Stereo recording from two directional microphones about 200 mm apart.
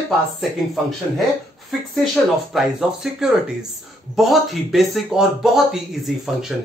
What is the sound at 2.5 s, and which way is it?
Speech, centre (ahead or behind).